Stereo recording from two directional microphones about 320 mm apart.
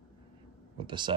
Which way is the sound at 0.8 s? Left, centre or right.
Centre.